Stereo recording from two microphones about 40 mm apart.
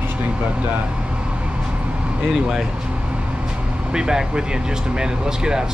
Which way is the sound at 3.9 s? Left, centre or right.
Centre.